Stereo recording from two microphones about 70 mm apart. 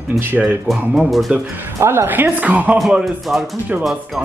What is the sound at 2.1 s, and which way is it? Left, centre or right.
Speech, right.